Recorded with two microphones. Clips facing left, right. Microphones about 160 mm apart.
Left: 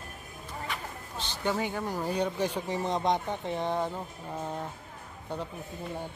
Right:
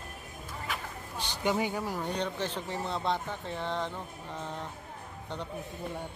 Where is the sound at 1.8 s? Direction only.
Centre (ahead or behind).